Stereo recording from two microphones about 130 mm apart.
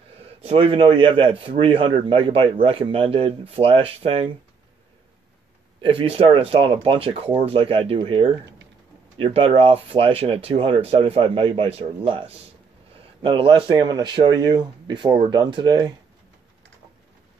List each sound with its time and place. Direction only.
0.4 s a man's voice: 45° right (ahead or behind)
5.8 s a man's voice: 45° right (ahead or behind)